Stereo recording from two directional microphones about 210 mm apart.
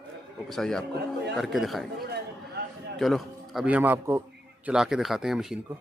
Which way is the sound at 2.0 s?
50° right (ahead or behind).